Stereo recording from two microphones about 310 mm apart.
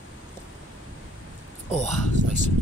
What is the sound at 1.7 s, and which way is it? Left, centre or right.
Speech, left.